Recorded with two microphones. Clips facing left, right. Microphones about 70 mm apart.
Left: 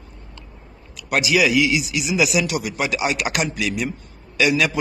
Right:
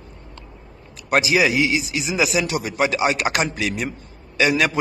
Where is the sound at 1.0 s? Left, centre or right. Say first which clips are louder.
Right 1 dB; right.